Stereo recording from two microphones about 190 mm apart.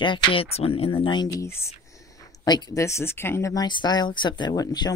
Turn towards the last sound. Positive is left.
turn(degrees=20)  # may be behind; listen again after turning